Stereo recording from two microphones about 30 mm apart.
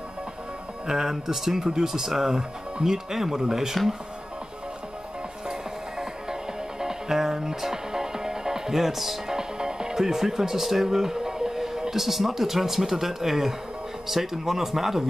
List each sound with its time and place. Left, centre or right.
0.8 s speech: centre
6.8 s music: centre
9.3 s music: right
11.9 s speech: centre